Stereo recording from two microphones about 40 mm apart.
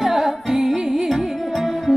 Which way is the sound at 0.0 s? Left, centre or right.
Centre.